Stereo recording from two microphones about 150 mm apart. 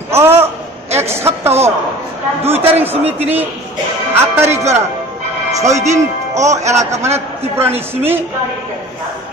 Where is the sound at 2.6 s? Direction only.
45° right (ahead or behind).